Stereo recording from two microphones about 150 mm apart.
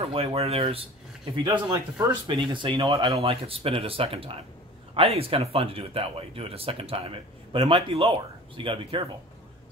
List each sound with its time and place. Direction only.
0.0 s speech: 40° right (ahead or behind)